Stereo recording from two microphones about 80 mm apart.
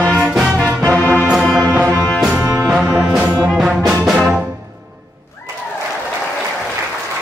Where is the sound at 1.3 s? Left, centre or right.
Centre.